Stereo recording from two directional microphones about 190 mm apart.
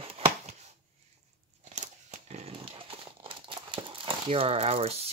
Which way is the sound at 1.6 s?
40° right (ahead or behind).